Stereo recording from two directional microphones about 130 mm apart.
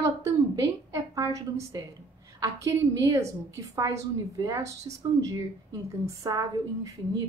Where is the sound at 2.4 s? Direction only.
25° right (ahead or behind).